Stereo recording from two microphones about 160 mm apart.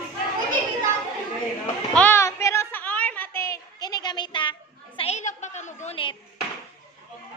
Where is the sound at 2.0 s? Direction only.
15° left (ahead or behind); by 5.9 s 45° left (ahead or behind).